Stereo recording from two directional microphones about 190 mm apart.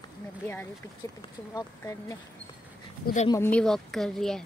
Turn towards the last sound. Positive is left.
turn(degrees=0)  # may be behind; listen again after turning